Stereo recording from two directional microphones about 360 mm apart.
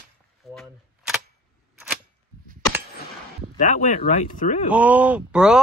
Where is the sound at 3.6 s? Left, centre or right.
Left.